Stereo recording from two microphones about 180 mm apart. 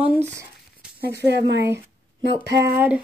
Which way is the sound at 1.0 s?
65° right (ahead or behind).